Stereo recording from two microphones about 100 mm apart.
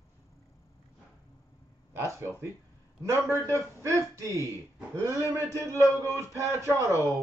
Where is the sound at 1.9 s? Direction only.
30° right (ahead or behind).